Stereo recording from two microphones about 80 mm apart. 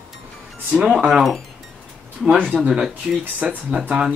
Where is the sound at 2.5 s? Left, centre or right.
Centre.